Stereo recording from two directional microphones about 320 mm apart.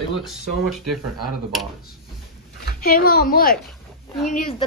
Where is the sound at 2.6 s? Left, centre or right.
Left.